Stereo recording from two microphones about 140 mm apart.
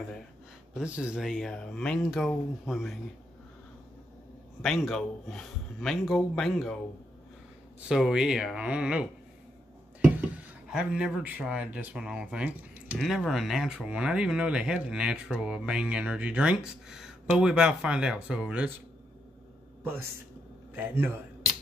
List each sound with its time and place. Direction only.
0.7 s speech: 5° right (ahead or behind)
4.6 s speech: centre (ahead or behind)
7.9 s speech: 5° right (ahead or behind)
10.7 s speech: 5° right (ahead or behind)
19.8 s a man's voice: 15° right (ahead or behind)